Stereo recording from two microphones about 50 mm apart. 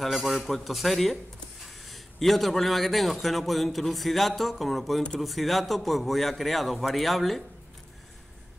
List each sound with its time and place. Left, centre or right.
0.0 s a man's voice: centre